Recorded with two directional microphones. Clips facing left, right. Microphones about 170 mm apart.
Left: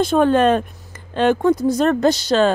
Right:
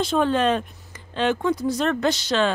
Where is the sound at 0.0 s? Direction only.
50° left (ahead or behind).